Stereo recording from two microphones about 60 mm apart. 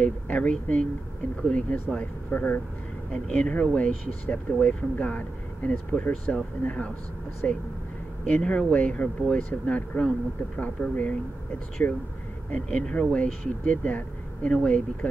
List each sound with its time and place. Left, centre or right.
0.0 s speech: left
11.8 s speech: left
12.4 s speech: left